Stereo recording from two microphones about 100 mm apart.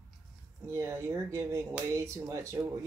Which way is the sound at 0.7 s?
30° right (ahead or behind).